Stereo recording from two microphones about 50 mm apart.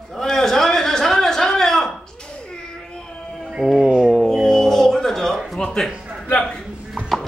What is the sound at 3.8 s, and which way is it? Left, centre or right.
Speech, centre.